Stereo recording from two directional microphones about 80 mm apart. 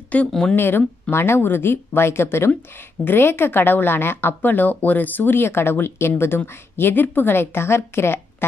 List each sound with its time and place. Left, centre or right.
0.3 s speech: centre
0.6 s speech: left